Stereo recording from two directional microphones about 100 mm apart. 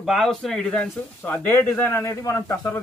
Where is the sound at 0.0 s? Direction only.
Centre (ahead or behind).